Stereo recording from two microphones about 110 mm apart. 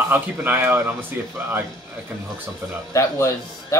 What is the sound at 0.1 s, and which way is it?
Speech, 15° right (ahead or behind).